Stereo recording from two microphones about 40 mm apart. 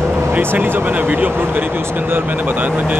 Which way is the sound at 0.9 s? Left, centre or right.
Right.